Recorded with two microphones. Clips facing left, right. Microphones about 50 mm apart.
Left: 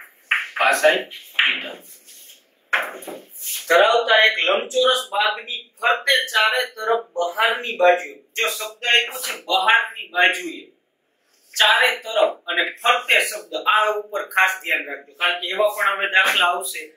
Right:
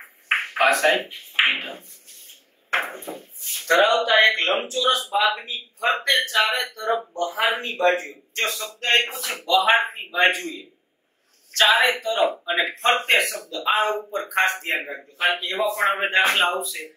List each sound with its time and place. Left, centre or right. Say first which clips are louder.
0.6 s speech: left 2 dB; centre
6.8 s speech: left 3 dB; centre
7.2 s speech: left 3 dB; centre